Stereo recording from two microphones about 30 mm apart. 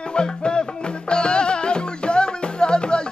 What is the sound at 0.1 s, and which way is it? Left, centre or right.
Music, left.